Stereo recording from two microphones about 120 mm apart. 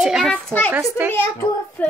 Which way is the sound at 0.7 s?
20° right (ahead or behind).